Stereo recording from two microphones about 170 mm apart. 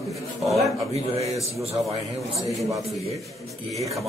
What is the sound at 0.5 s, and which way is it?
Speech, 40° right (ahead or behind).